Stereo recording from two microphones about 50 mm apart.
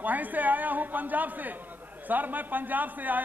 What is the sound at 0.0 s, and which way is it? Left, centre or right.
A woman's voice, right.